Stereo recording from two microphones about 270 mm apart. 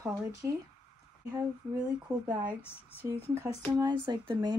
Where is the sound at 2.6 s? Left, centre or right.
Centre.